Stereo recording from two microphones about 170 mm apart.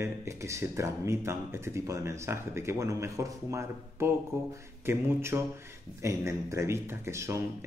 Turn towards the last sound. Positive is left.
turn(degrees=-15)  # may be behind; listen again after turning